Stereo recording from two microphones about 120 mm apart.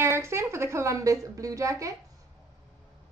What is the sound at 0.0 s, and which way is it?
Speech, 20° right (ahead or behind).